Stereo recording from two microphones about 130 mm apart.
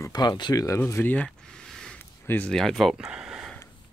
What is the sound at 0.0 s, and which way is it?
Speech, 30° left (ahead or behind).